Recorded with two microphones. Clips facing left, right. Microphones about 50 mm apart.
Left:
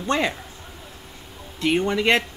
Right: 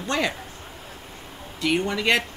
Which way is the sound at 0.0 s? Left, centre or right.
Left.